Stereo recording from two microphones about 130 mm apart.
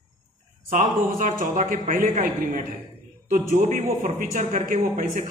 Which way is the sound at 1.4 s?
85° right.